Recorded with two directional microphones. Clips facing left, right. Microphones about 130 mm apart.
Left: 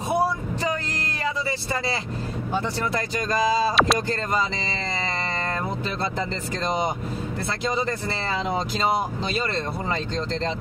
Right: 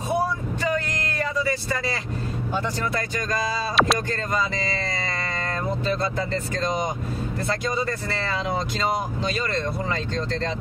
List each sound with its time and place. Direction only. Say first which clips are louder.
3.7 s speech: even; centre (ahead or behind)